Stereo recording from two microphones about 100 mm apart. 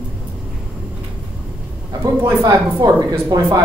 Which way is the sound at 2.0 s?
35° right (ahead or behind).